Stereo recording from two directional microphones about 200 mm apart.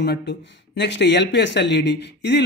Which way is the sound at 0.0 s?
60° left (ahead or behind).